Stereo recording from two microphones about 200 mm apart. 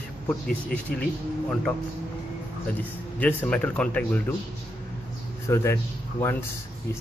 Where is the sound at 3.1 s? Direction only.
5° left (ahead or behind).